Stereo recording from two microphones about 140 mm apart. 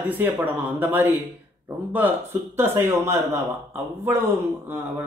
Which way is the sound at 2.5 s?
15° right (ahead or behind).